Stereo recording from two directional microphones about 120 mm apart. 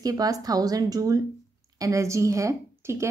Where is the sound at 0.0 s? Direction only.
30° right (ahead or behind).